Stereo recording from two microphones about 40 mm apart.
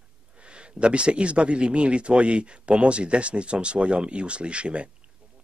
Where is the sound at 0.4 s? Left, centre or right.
Right.